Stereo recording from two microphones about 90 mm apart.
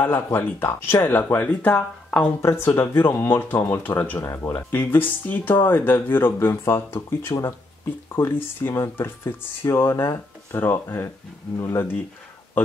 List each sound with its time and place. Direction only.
0.0 s speech: 25° left (ahead or behind)
2.0 s a sound: 10° left (ahead or behind)
2.4 s speech: 30° left (ahead or behind)